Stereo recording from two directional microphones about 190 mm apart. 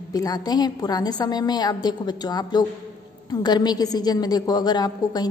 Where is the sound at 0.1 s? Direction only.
20° left (ahead or behind).